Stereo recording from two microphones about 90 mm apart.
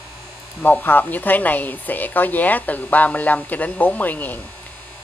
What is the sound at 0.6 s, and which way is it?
Speech, 20° left (ahead or behind).